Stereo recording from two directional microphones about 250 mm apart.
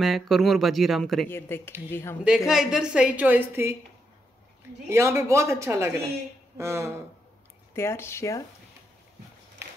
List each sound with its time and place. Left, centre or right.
0.0 s speech: centre
2.2 s speech: centre
4.8 s a woman's voice: centre
7.7 s speech: centre